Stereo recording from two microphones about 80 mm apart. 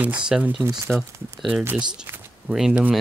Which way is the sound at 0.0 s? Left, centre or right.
Centre.